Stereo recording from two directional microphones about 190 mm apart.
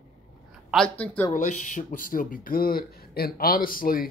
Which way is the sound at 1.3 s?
40° left (ahead or behind).